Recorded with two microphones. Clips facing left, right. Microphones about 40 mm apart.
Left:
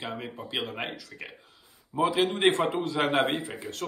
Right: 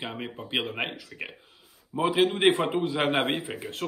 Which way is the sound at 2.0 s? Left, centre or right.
Centre.